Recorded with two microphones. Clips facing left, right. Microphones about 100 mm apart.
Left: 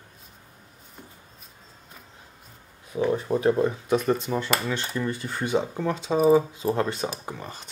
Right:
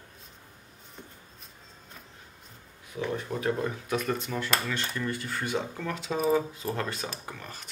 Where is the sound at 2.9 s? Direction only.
30° left (ahead or behind).